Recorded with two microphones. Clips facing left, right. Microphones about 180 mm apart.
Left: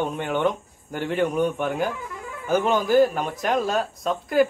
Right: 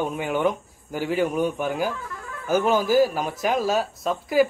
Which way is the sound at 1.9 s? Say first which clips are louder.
Left 1 dB; 15° left (ahead or behind).